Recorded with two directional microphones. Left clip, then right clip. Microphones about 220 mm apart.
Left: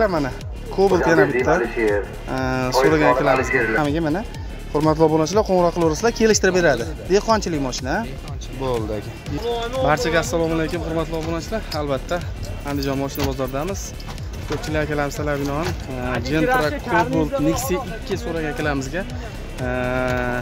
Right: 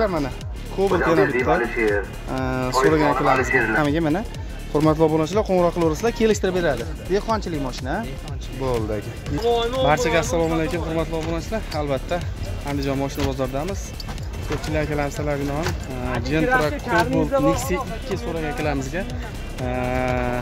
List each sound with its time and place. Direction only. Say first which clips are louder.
0.0 s speech: left 3 dB; 10° left (ahead or behind)
6.5 s speech: left 5 dB; 25° left (ahead or behind)
9.8 s speech: left 2 dB; 5° left (ahead or behind)